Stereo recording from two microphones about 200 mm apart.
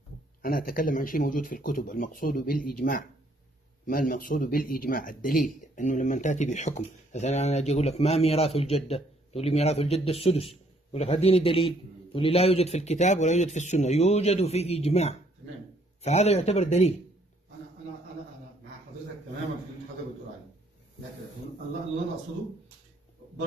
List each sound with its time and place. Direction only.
0.4 s speech: 45° left (ahead or behind)